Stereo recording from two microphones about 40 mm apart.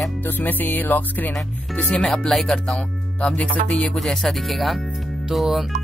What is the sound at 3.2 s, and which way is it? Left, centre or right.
Speech, left.